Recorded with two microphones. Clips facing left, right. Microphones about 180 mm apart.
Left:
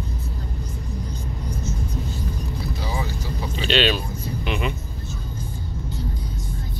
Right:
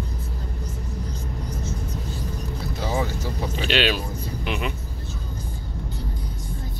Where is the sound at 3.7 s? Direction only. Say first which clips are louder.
Left 2 dB; 10° right (ahead or behind).